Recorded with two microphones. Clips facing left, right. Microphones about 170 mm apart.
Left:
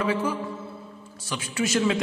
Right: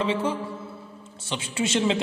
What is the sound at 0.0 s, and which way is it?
A man's voice, 25° right (ahead or behind).